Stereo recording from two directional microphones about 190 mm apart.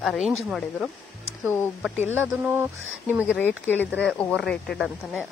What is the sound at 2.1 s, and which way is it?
Speech, 10° right (ahead or behind).